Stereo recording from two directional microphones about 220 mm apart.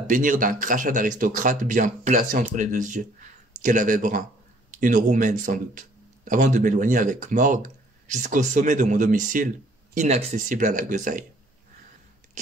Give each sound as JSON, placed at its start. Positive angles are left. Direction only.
{"t": 0.0, "sound": "speech", "side_deg": -35}